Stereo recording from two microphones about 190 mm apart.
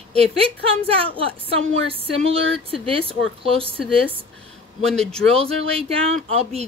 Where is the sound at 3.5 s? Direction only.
30° right (ahead or behind).